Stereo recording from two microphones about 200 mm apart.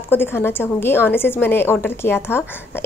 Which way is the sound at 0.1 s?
10° left (ahead or behind).